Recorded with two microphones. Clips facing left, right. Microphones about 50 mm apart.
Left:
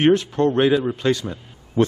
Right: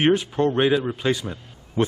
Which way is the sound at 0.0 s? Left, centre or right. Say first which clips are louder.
Left 3 dB; centre.